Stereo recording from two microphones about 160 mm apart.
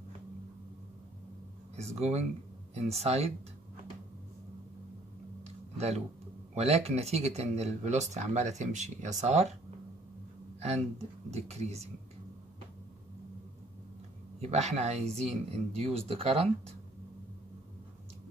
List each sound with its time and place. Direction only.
1.8 s speech: 40° right (ahead or behind)
5.8 s speech: 40° right (ahead or behind)
10.6 s speech: 40° right (ahead or behind)
14.4 s speech: 40° right (ahead or behind)